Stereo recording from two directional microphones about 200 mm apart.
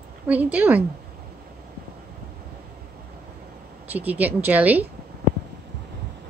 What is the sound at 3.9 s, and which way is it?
Speech, 10° right (ahead or behind).